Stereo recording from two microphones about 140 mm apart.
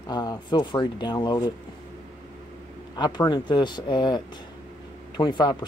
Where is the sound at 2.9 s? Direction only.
30° left (ahead or behind).